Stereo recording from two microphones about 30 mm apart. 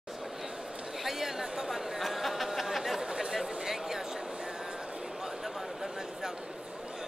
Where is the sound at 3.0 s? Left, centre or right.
Right.